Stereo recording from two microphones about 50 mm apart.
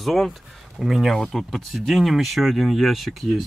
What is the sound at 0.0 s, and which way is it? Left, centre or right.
Speech, centre.